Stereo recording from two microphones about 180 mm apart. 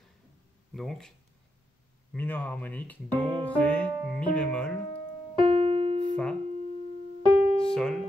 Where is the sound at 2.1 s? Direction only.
10° left (ahead or behind).